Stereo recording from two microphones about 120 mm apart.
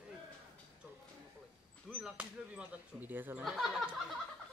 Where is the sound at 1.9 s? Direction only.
10° right (ahead or behind).